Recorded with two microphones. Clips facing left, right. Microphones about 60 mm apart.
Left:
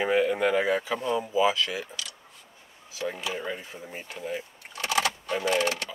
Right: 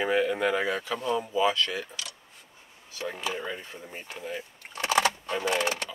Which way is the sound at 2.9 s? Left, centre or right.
Centre.